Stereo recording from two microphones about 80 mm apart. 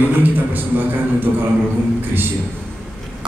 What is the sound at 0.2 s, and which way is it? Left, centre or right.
Speech, right.